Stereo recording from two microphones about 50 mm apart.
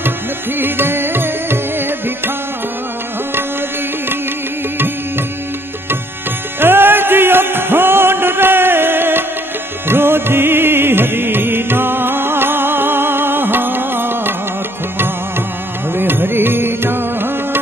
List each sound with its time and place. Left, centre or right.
0.6 s music: right
6.6 s music: right
15.9 s music: right